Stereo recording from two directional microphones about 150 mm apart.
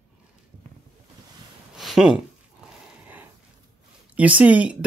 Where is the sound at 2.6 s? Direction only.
10° right (ahead or behind).